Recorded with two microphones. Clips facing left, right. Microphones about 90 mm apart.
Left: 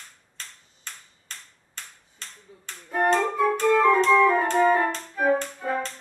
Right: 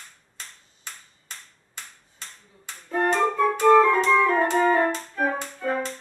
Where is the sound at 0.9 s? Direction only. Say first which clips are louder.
Right 1 dB; 5° right (ahead or behind).